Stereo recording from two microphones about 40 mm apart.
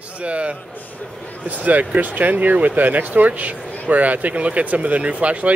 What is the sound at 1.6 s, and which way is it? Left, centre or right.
Speech, right.